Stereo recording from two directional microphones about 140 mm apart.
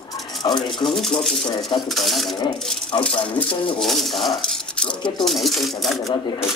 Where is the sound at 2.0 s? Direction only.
Centre (ahead or behind).